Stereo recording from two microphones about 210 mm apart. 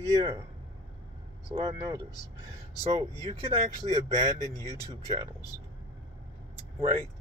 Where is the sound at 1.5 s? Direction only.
25° right (ahead or behind).